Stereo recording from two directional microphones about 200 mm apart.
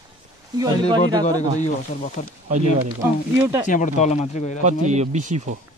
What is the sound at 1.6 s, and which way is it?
Speech, 40° left (ahead or behind).